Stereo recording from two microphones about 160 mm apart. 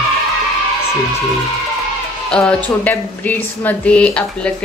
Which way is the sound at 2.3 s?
5° left (ahead or behind).